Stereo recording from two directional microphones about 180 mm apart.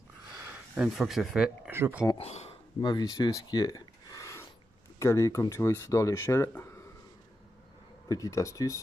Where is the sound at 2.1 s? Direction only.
35° left (ahead or behind).